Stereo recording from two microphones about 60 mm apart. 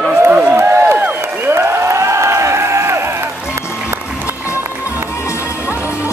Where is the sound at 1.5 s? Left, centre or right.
Right.